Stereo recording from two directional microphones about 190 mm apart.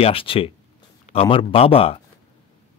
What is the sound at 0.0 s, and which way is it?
A man's voice, 30° left (ahead or behind).